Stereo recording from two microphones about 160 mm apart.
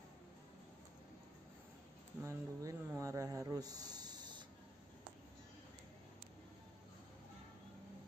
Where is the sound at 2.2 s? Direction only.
20° right (ahead or behind).